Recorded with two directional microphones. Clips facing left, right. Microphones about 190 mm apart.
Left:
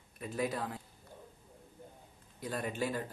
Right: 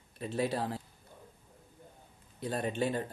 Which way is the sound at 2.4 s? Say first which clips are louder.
Right 4 dB; 25° right (ahead or behind).